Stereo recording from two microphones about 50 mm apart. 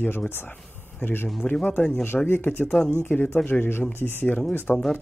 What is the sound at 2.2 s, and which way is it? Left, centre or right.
Speech, left.